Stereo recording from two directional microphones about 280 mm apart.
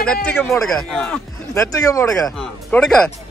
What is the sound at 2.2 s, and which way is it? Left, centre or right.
Speech, centre.